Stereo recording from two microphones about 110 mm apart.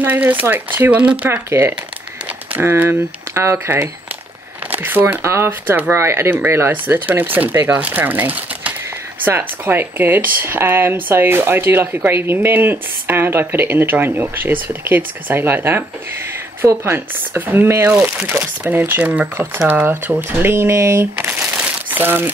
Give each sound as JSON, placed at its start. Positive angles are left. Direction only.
{"t": 0.0, "sound": "speech", "side_deg": -15}